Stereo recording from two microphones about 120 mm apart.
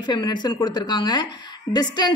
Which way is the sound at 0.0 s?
35° left (ahead or behind).